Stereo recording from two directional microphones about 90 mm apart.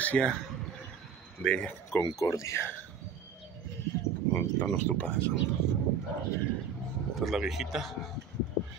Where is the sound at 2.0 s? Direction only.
40° left (ahead or behind).